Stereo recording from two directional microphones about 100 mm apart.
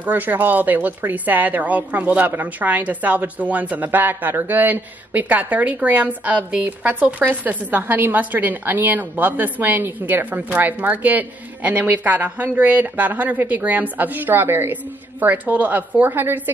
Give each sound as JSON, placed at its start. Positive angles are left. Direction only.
{"t": 0.0, "sound": "a woman's voice", "side_deg": -20}